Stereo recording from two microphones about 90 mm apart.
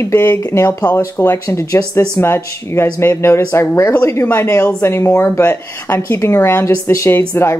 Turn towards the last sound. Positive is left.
turn(degrees=25)  # may be behind; listen again after turning